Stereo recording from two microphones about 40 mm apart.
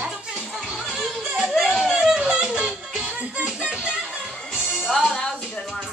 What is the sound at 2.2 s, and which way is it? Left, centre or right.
Music, right.